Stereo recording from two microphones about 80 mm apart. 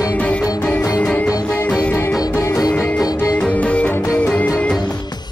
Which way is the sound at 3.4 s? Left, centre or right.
Centre.